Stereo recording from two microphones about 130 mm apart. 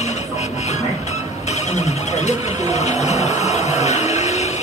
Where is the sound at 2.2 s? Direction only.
60° left (ahead or behind).